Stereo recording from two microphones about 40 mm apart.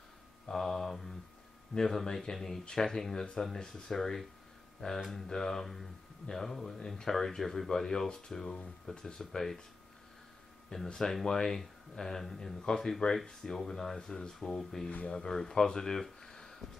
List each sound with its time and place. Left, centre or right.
0.5 s mantra: centre
1.8 s speech: centre
10.7 s speech: centre
14.6 s speech: centre
16.2 s a sound: centre